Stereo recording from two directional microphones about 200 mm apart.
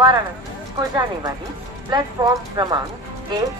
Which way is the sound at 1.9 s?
20° right (ahead or behind).